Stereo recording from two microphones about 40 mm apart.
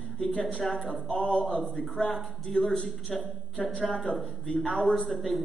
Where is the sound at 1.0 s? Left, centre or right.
Left.